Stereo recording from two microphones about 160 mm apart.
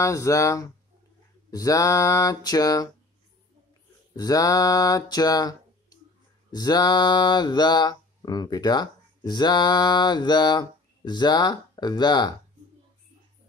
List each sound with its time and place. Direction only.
0.0 s mantra: 20° left (ahead or behind)
4.1 s mantra: 25° left (ahead or behind)